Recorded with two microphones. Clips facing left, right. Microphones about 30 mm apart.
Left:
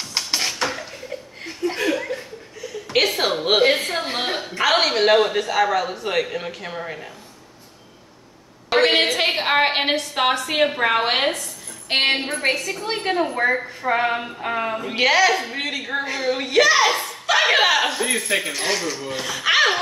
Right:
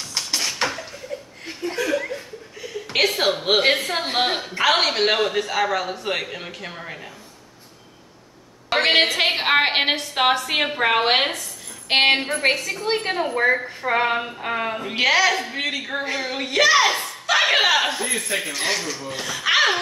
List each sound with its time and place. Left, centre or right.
0.1 s a sound: left
1.6 s chuckle: right
2.9 s a woman's voice: centre
3.9 s a woman's voice: centre
4.4 s a woman's voice: centre
8.6 s a woman's voice: centre